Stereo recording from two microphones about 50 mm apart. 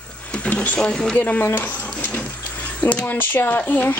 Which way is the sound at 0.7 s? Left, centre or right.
Centre.